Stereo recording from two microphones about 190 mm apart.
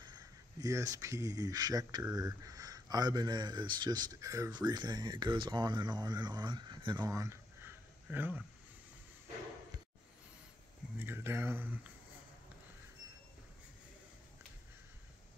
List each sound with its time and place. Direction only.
0.0 s speech: 20° right (ahead or behind)
11.0 s speech: 10° right (ahead or behind)